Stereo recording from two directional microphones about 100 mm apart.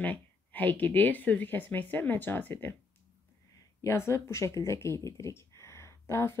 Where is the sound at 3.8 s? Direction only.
30° left (ahead or behind).